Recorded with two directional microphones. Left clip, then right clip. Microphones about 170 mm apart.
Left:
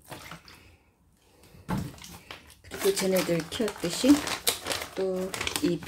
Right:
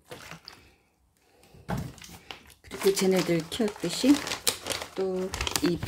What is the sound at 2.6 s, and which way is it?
Speech, 35° right (ahead or behind).